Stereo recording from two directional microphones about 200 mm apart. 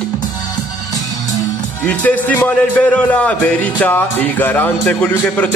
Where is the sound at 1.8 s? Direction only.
10° left (ahead or behind).